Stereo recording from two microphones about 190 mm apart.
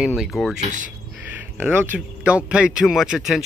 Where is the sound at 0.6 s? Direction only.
40° right (ahead or behind).